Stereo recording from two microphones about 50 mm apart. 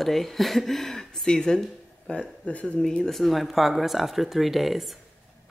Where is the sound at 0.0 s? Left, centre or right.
Centre; by 2.7 s left.